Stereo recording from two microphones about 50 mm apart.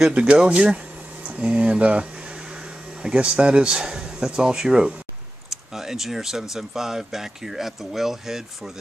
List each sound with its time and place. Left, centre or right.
0.2 s speech: centre